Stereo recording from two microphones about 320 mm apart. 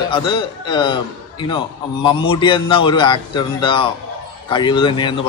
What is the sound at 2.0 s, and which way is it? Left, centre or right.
Speech, centre.